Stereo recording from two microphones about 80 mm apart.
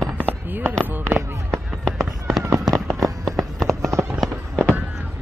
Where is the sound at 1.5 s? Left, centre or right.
Centre.